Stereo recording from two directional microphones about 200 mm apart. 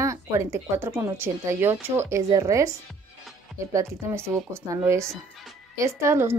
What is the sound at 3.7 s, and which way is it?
A woman's voice, 15° right (ahead or behind).